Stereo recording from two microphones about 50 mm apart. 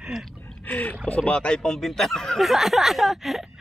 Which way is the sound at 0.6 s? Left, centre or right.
Left.